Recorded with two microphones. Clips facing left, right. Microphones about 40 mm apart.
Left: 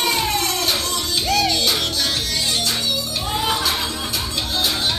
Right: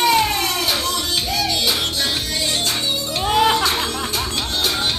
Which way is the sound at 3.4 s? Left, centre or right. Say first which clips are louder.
Right 5 dB; right.